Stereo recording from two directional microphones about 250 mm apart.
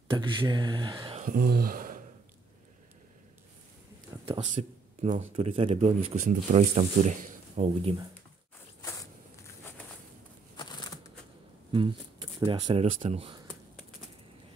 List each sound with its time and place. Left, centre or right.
0.1 s speech: centre
1.2 s speech: right
4.3 s speech: right
10.5 s a sound: centre
11.7 s speech: centre